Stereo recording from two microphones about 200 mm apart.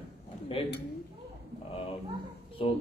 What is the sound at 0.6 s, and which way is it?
Speech, 30° left (ahead or behind).